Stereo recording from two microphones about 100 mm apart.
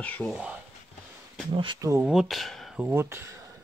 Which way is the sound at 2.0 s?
Centre (ahead or behind).